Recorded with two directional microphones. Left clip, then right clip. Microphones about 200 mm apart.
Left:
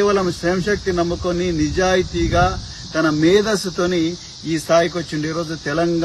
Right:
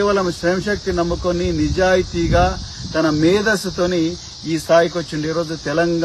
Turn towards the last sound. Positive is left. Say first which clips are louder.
# right 2 dB
turn(degrees=-15)  # may be behind; listen again after turning